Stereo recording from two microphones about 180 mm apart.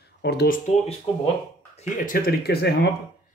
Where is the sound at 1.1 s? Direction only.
30° left (ahead or behind).